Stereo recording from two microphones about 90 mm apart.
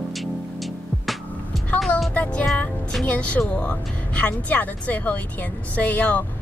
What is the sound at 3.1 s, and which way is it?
Speech, 15° left (ahead or behind).